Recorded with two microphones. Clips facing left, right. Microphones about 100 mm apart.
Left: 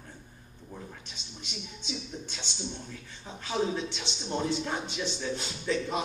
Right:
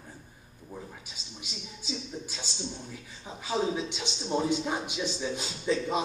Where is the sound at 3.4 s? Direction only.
5° right (ahead or behind).